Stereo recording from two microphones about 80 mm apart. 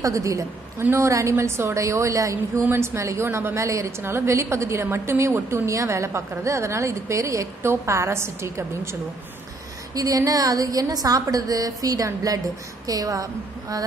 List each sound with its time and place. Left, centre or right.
0.0 s a woman's voice: right
2.6 s a woman's voice: right
9.9 s a woman's voice: right